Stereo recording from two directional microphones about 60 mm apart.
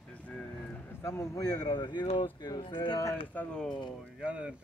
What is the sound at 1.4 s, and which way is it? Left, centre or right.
Speech, left.